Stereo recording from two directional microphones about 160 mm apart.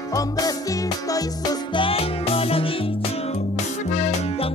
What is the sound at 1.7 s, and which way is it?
Music, 35° left (ahead or behind).